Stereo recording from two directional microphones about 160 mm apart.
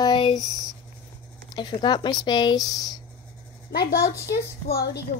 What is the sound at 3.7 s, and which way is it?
Speech, 75° left (ahead or behind).